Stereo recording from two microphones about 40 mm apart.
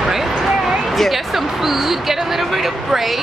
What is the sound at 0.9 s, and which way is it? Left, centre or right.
Speech, centre.